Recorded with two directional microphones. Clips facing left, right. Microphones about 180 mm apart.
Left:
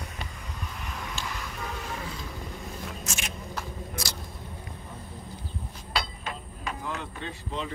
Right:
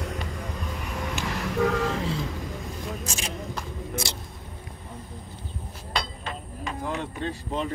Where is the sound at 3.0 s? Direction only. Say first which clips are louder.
Right 4 dB; 35° right (ahead or behind).